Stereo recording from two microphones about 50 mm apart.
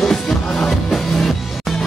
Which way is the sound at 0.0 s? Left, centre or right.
Centre.